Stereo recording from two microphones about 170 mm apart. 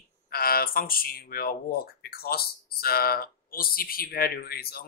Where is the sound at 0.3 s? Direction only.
65° left (ahead or behind).